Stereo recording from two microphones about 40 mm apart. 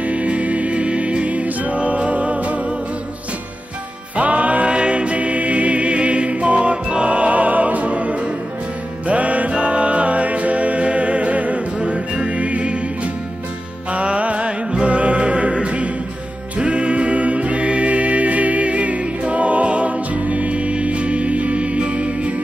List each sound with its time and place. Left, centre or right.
0.0 s music: right
4.2 s music: right
11.8 s music: right